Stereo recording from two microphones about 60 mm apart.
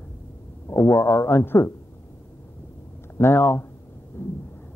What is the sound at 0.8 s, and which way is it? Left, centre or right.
Speech, left.